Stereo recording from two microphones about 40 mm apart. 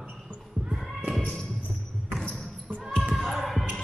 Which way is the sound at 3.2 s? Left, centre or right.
Centre.